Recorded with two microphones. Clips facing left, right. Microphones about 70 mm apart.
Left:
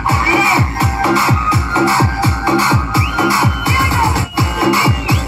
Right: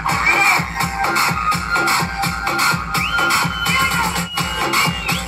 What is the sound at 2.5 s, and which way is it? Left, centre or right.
Music, left.